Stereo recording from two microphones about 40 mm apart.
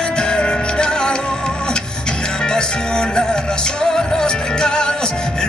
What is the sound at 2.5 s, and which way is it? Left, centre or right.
Music, centre.